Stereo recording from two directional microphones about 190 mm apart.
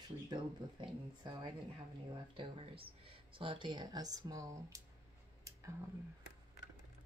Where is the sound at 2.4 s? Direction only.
30° right (ahead or behind).